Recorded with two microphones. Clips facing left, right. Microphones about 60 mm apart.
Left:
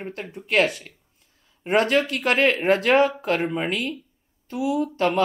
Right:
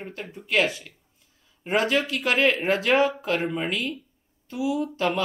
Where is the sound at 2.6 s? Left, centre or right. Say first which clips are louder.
Left 3 dB; left.